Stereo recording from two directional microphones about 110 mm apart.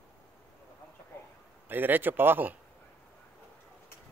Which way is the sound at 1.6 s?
15° right (ahead or behind).